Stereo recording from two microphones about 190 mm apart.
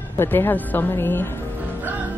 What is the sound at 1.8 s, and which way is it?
Music, 10° right (ahead or behind).